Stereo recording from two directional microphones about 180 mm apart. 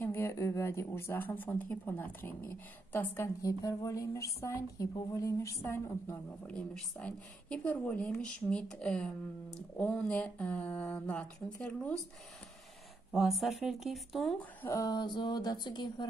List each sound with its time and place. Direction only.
0.0 s speech: 15° left (ahead or behind)
13.1 s speech: centre (ahead or behind)
14.7 s speech: 20° left (ahead or behind)